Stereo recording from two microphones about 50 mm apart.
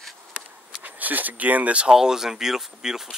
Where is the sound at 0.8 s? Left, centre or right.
Right.